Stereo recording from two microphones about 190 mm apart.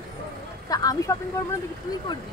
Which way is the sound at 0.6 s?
20° left (ahead or behind).